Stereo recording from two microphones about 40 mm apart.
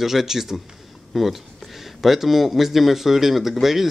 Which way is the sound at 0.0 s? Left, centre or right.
Centre.